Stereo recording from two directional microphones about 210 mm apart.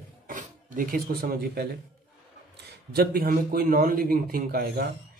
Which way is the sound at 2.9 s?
45° right (ahead or behind).